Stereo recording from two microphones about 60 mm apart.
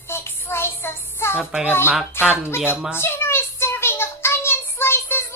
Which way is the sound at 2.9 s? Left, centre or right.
Left.